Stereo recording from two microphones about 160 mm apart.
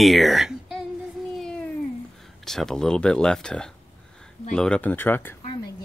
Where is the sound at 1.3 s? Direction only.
5° left (ahead or behind).